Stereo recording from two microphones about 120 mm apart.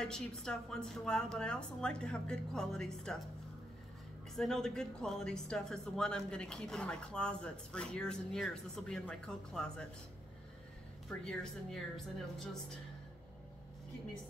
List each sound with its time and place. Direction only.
0.0 s a woman's voice: 5° left (ahead or behind)
4.4 s speech: 5° left (ahead or behind)
11.1 s a woman's voice: 5° left (ahead or behind)